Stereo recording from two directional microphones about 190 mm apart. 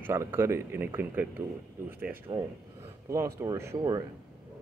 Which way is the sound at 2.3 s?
25° right (ahead or behind).